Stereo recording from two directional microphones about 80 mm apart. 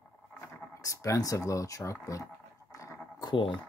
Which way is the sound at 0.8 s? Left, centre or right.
Left.